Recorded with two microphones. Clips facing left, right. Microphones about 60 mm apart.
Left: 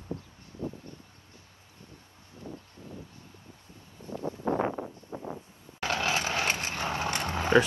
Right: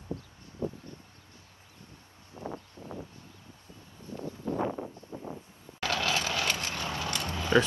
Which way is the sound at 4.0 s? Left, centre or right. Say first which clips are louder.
Left 4 dB; left.